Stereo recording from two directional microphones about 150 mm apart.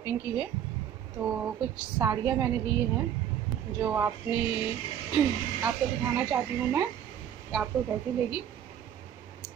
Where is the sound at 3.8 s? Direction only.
15° right (ahead or behind).